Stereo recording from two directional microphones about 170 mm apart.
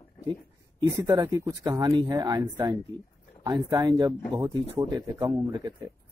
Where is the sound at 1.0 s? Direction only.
20° right (ahead or behind).